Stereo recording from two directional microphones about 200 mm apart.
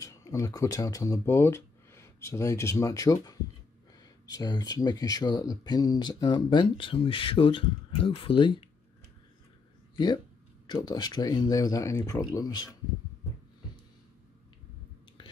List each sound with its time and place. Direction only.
0.0 s speech: 15° left (ahead or behind)
9.9 s speech: 20° left (ahead or behind)